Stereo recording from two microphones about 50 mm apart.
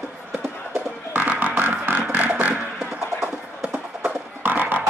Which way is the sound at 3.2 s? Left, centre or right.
Right.